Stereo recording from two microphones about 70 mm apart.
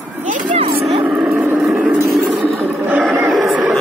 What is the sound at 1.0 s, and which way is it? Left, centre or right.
Vehicle, centre.